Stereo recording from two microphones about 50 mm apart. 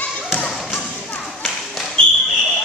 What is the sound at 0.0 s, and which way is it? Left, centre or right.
Thump, left.